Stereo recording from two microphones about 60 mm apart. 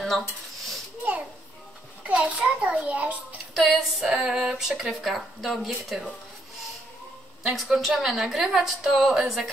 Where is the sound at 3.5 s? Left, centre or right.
Centre.